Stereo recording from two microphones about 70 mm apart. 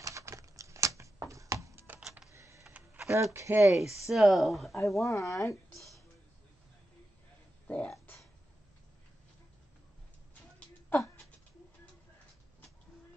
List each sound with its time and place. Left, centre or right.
0.0 s typewriter: right
2.3 s printer: right
3.0 s a sound: right
3.3 s speech: right
4.1 s speech: centre
5.0 s speech: left
7.6 s a sound: left